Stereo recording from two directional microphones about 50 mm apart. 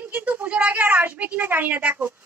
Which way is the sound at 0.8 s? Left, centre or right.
Right.